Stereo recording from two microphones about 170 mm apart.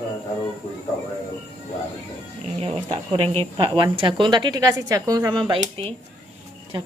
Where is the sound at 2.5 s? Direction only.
35° right (ahead or behind).